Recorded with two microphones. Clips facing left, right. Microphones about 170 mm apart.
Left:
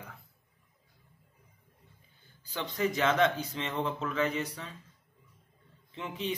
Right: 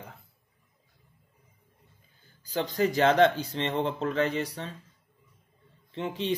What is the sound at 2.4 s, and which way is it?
Speech, 35° right (ahead or behind).